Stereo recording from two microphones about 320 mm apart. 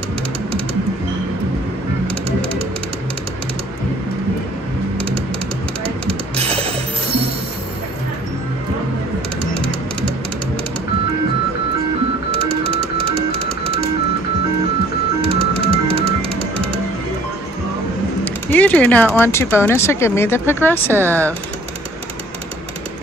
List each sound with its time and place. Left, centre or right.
6.3 s music: centre
12.4 s music: centre
15.2 s music: centre
18.2 s speech: centre